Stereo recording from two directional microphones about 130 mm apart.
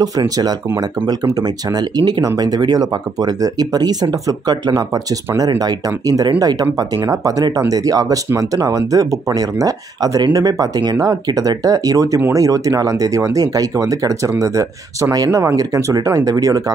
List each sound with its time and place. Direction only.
0.0 s speech: 30° right (ahead or behind)